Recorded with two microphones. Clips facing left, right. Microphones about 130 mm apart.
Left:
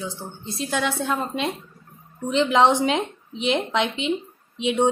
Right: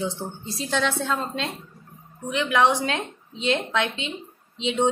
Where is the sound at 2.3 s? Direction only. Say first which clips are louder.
Left 3 dB; 25° left (ahead or behind).